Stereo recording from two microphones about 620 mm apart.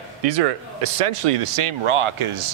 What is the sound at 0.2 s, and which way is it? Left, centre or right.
Speech, right.